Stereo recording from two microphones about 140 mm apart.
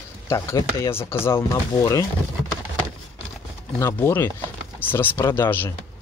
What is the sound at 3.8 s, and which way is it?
Speech, 15° left (ahead or behind).